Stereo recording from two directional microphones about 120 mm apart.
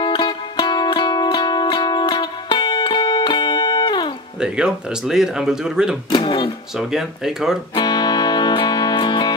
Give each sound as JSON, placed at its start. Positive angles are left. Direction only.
{"t": 0.0, "sound": "music", "side_deg": 40}
{"t": 4.4, "sound": "speech", "side_deg": -5}
{"t": 6.1, "sound": "speech", "side_deg": 45}
{"t": 6.8, "sound": "speech", "side_deg": -5}
{"t": 7.7, "sound": "music", "side_deg": 35}